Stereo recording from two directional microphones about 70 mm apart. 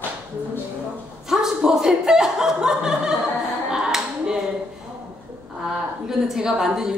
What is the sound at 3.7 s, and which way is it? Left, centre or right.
Clapping, centre.